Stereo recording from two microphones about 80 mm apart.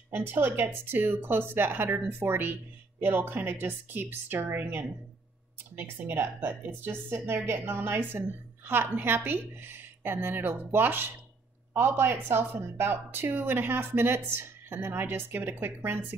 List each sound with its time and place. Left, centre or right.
0.1 s speech: right